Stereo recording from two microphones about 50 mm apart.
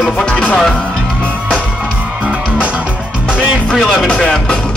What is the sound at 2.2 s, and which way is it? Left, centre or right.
Music, right.